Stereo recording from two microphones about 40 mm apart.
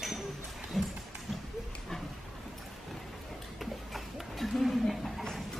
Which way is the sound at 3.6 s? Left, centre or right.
Centre.